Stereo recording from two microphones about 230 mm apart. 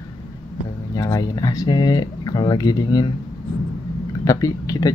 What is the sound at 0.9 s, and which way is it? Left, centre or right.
Speech, centre.